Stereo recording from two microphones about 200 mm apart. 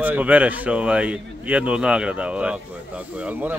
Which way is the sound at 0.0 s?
5° right (ahead or behind).